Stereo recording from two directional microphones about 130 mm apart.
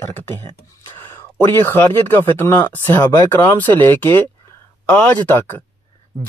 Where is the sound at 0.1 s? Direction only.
20° left (ahead or behind).